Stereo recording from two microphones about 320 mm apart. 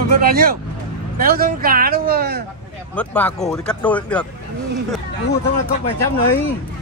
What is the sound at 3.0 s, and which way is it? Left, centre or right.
Speech, centre.